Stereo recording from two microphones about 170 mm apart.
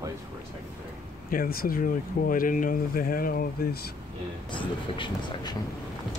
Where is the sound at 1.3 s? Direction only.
60° left (ahead or behind).